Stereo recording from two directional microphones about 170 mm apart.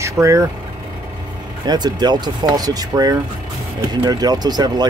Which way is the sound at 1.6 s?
25° right (ahead or behind).